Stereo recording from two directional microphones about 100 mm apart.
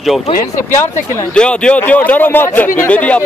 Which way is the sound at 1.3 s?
10° left (ahead or behind).